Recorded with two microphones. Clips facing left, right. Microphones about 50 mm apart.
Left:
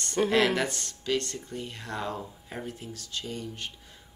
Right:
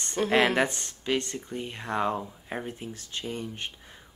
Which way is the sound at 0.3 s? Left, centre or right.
Right.